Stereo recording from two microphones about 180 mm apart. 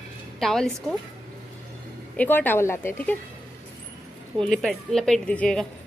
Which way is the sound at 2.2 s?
10° left (ahead or behind).